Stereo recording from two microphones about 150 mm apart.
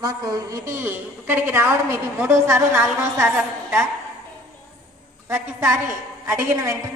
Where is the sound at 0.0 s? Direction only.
20° right (ahead or behind).